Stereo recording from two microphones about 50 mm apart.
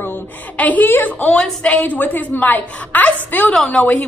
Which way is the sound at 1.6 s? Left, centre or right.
Left.